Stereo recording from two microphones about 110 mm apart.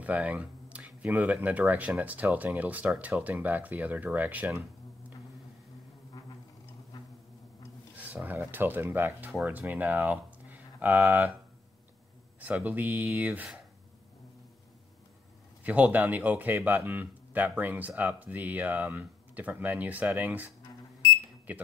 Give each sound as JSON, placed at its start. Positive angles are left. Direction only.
{"t": 0.0, "sound": "speech", "side_deg": -15}
{"t": 8.0, "sound": "speech", "side_deg": -15}
{"t": 12.4, "sound": "speech", "side_deg": -15}
{"t": 15.6, "sound": "speech", "side_deg": -15}